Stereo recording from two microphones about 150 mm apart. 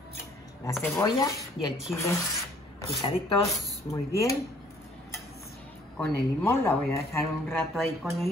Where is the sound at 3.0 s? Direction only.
25° left (ahead or behind).